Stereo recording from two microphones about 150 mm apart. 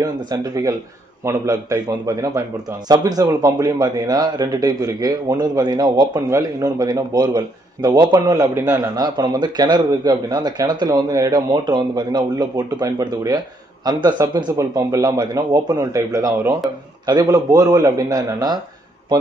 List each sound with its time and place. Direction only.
0.0 s a man's voice: 25° right (ahead or behind)